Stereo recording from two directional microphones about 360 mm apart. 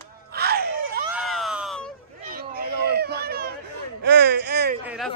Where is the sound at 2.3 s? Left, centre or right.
Right.